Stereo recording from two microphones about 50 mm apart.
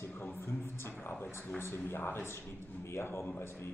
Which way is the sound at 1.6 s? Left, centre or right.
Left.